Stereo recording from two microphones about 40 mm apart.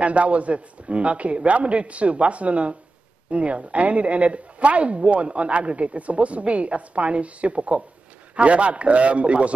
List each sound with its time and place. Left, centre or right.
0.0 s a woman's voice: right